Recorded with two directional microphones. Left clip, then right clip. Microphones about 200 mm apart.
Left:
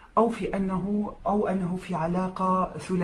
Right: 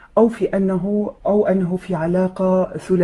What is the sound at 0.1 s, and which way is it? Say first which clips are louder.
Speech: right 8 dB; 40° right (ahead or behind).